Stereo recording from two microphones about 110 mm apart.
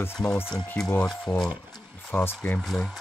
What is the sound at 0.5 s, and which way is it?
Speech, 5° left (ahead or behind).